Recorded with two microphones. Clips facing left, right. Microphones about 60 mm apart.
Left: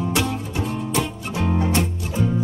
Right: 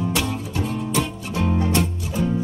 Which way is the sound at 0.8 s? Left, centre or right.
Centre.